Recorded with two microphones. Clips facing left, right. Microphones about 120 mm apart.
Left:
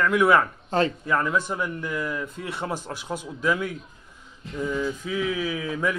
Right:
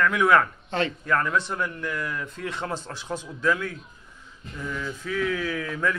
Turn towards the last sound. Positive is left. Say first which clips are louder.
# left 1 dB
turn(degrees=10)  # may be behind; listen again after turning